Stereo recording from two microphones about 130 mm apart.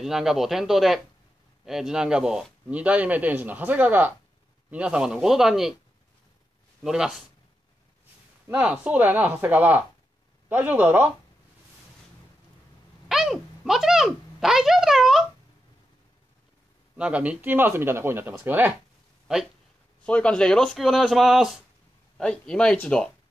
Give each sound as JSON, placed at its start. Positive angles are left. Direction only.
{"t": 0.0, "sound": "speech", "side_deg": -5}
{"t": 6.8, "sound": "speech", "side_deg": -5}
{"t": 8.5, "sound": "speech", "side_deg": -10}
{"t": 13.1, "sound": "a sound", "side_deg": 0}
{"t": 16.9, "sound": "speech", "side_deg": -10}
{"t": 20.1, "sound": "speech", "side_deg": 10}